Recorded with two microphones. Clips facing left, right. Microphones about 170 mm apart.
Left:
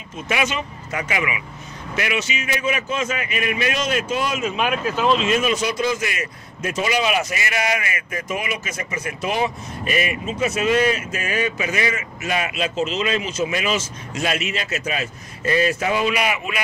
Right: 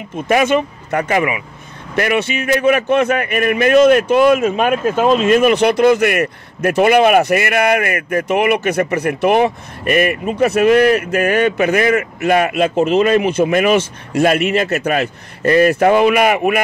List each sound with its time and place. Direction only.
0.3 s a man's voice: 50° right (ahead or behind)